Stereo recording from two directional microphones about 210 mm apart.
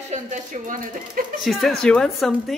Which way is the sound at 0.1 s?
40° right (ahead or behind).